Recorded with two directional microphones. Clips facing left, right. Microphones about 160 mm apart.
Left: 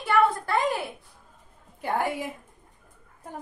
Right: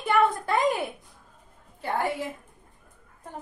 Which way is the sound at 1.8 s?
15° left (ahead or behind).